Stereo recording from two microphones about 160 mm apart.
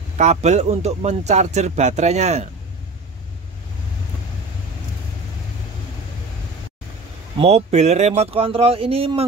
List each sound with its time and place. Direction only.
0.2 s speech: 45° right (ahead or behind)
7.3 s speech: 40° right (ahead or behind)